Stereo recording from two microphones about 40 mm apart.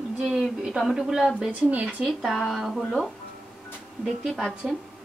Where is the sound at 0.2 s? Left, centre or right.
Centre.